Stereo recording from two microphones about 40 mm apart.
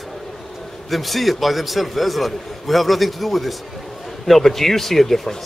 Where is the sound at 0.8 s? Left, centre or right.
Centre.